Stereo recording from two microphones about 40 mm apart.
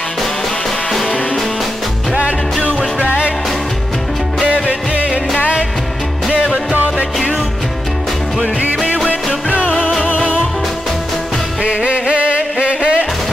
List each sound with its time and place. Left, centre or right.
4.5 s music: right
6.3 s music: right
11.6 s music: right